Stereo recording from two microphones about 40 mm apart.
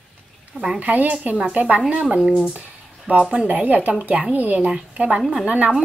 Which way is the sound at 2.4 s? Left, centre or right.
Right.